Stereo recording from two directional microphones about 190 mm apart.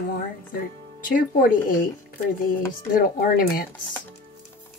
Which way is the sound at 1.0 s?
45° left (ahead or behind).